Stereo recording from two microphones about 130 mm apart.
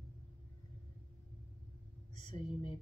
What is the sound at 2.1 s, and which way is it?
Speech, 40° left (ahead or behind).